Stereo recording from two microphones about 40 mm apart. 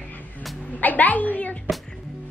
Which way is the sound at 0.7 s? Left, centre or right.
Left.